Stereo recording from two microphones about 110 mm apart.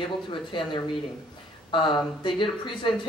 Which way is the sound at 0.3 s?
50° left (ahead or behind).